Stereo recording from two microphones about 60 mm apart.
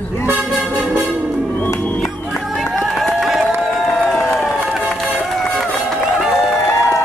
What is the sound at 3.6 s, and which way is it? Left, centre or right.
Crowd, centre.